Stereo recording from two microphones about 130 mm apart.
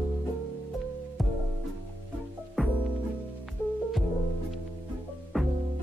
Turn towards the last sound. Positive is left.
turn(degrees=0)  # may be behind; listen again after turning